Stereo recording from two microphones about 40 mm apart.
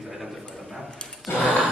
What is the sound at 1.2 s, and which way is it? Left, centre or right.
Gasp, left.